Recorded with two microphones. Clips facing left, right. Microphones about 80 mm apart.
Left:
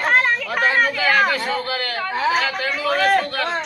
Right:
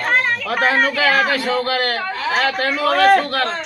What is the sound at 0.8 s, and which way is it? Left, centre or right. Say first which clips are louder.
Speech: right 3 dB; right.